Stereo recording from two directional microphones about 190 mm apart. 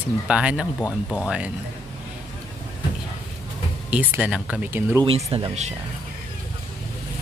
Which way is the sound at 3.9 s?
10° right (ahead or behind).